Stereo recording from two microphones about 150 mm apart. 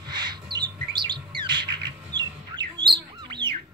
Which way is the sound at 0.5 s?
30° right (ahead or behind).